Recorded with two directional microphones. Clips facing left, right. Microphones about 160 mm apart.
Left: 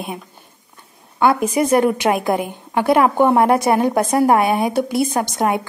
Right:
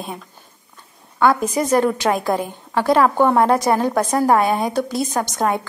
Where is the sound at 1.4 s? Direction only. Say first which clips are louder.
Left 2 dB; 10° left (ahead or behind).